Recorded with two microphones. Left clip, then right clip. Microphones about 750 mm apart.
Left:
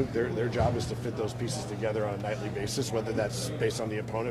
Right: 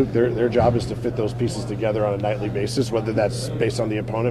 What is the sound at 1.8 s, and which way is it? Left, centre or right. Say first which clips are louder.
A man's voice: right 10 dB; right.